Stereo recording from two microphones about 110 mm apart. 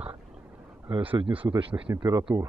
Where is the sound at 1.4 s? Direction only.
45° right (ahead or behind).